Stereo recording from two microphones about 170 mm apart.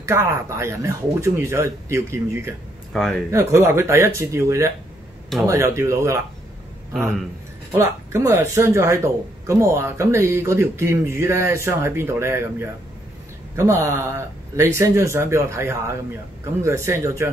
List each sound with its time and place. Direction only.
0.0 s speech: 15° right (ahead or behind)
2.9 s speech: 5° left (ahead or behind)
3.3 s speech: 15° right (ahead or behind)
7.7 s speech: 15° right (ahead or behind)